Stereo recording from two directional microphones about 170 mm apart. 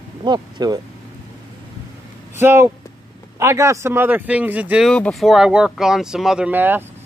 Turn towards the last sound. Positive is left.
turn(degrees=-10)  # may be behind; listen again after turning